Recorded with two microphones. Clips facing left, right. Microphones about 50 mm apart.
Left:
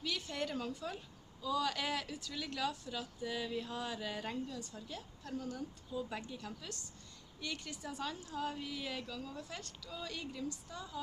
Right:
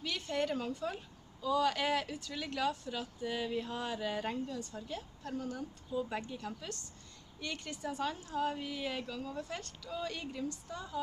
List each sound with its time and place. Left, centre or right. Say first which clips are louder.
0.0 s a woman's voice: right 4 dB; centre
7.5 s a woman's voice: right 4 dB; centre
8.4 s speech: right 5 dB; centre